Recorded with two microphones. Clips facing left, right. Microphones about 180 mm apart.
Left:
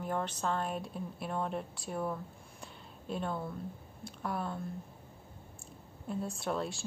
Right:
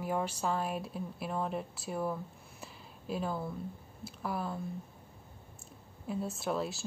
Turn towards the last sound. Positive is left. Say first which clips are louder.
# right 1 dB
turn(degrees=0)  # may be behind; listen again after turning